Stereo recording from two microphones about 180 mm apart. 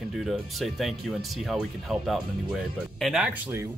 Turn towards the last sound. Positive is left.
turn(degrees=-5)  # may be behind; listen again after turning